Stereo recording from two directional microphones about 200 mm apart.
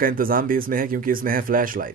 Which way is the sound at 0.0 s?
45° right (ahead or behind).